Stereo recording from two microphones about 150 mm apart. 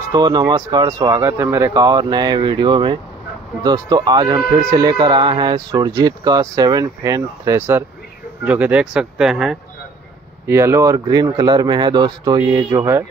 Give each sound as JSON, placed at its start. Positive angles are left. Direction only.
{"t": 0.1, "sound": "speech", "side_deg": -25}
{"t": 10.4, "sound": "speech", "side_deg": -15}